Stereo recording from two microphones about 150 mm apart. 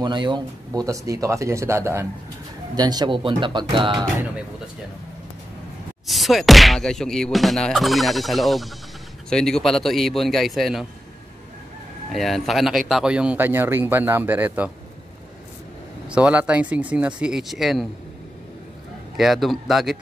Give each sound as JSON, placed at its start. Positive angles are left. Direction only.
{"t": 0.0, "sound": "speech", "side_deg": -30}
{"t": 6.0, "sound": "speech", "side_deg": 0}
{"t": 12.1, "sound": "speech", "side_deg": 0}
{"t": 16.1, "sound": "speech", "side_deg": -10}
{"t": 19.1, "sound": "speech", "side_deg": 0}